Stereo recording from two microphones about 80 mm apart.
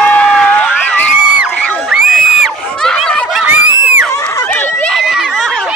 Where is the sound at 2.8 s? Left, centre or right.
Centre.